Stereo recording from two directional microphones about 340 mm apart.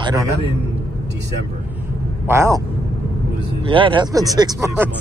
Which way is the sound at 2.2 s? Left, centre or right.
Centre.